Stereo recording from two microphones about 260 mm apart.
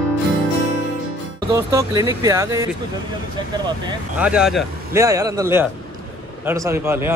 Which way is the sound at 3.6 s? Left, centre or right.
Centre.